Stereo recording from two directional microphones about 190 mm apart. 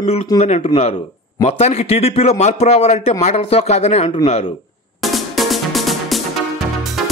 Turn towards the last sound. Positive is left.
turn(degrees=0)  # may be behind; listen again after turning